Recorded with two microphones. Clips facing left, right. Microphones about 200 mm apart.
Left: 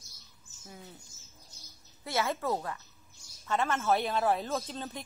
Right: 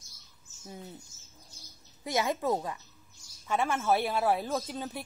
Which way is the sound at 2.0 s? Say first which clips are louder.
Right 2 dB; 15° right (ahead or behind).